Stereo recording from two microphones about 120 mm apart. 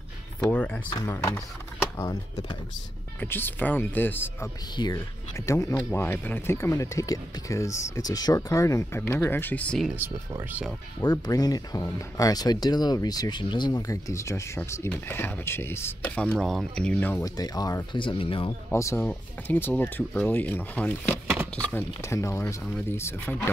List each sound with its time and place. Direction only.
0.4 s speech: 10° left (ahead or behind)
0.9 s speech: 25° left (ahead or behind)
4.7 s speech: 35° left (ahead or behind)
5.3 s speech: 25° left (ahead or behind)
11.0 s speech: 35° left (ahead or behind)
16.0 s speech: 10° left (ahead or behind)
17.2 s speech: 30° left (ahead or behind)
17.9 s speech: 45° left (ahead or behind)
18.7 s speech: 25° left (ahead or behind)